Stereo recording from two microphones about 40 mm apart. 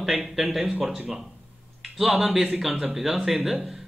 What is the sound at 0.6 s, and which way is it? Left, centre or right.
Speech, centre.